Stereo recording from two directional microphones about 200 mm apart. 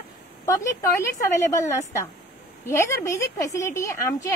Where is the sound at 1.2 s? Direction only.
15° left (ahead or behind).